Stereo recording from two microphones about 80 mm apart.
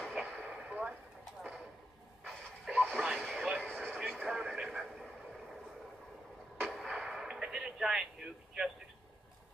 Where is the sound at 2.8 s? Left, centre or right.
Centre.